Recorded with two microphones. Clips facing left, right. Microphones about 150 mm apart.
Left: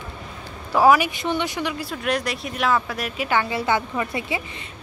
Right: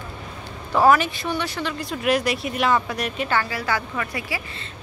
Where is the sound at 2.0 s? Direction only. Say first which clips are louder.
Right 4 dB; centre (ahead or behind).